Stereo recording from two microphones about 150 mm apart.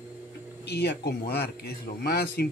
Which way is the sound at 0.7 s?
90° left.